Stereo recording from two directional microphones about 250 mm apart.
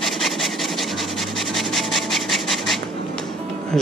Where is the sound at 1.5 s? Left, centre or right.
Centre.